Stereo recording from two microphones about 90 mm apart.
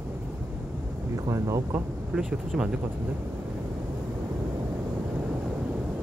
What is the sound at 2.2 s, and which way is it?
Speech, 5° right (ahead or behind).